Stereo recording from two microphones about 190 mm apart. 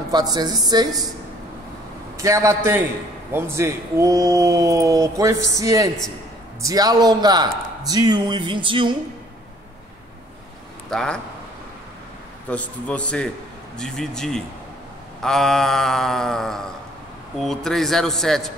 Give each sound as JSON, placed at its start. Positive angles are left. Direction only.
{"t": 0.1, "sound": "a man's voice", "side_deg": -20}
{"t": 2.1, "sound": "a man's voice", "side_deg": -15}
{"t": 10.9, "sound": "speech", "side_deg": 5}
{"t": 12.4, "sound": "mantra", "side_deg": 5}